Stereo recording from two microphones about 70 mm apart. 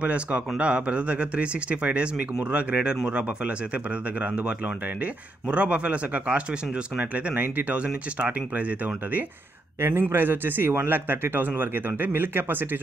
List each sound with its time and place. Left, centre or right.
0.0 s speech: centre
9.8 s speech: right